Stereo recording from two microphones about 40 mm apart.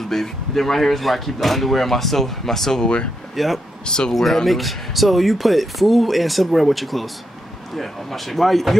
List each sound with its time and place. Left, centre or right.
0.1 s speech: centre
2.8 s speech: left
3.3 s speech: centre
3.8 s speech: centre
4.1 s speech: centre